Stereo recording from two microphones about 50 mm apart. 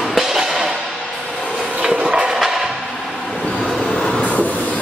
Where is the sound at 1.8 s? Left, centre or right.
Centre.